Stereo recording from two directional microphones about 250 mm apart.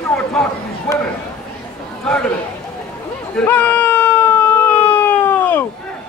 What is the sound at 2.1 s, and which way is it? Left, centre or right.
Speech, centre.